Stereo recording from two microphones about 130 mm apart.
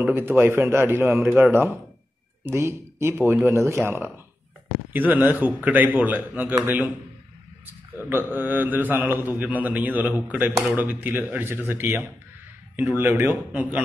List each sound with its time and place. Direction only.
0.0 s a man's voice: 15° right (ahead or behind)
1.2 s speech: 5° right (ahead or behind)
1.5 s a man's voice: 15° right (ahead or behind)
7.6 s a man's voice: 15° right (ahead or behind)